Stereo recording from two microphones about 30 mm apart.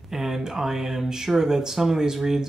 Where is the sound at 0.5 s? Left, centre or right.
Centre.